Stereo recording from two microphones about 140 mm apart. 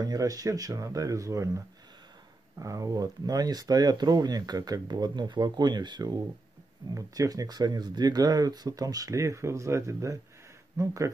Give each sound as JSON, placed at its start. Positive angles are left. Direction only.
{"t": 0.0, "sound": "speech", "side_deg": -25}
{"t": 2.6, "sound": "speech", "side_deg": -25}